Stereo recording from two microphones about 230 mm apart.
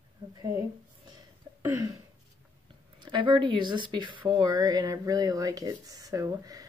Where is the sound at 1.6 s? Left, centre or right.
Centre.